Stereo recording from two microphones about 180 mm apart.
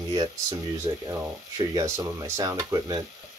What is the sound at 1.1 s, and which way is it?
Speech, 15° right (ahead or behind).